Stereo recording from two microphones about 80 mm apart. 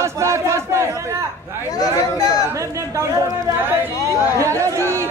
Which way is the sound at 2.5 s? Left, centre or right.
Right.